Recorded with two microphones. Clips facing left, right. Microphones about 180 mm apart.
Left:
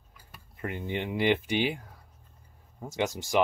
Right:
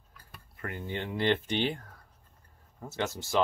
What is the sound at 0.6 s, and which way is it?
Speech, 20° left (ahead or behind).